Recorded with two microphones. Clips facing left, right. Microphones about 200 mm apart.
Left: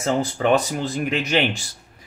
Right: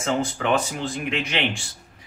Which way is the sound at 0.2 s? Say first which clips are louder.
Left 4 dB; 40° left (ahead or behind).